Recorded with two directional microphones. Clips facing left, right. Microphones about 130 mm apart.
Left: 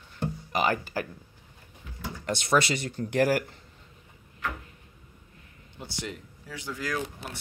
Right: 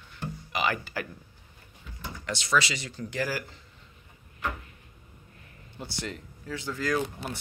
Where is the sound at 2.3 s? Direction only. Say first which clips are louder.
Left 3 dB; 55° left (ahead or behind).